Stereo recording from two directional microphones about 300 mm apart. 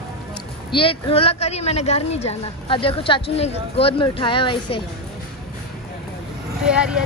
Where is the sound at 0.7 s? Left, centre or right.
Centre.